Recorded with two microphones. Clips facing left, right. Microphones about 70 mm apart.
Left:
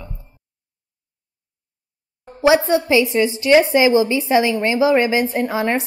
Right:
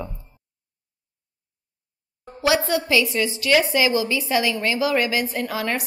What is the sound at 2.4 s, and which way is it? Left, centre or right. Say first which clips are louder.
A woman's voice: left 6 dB; left.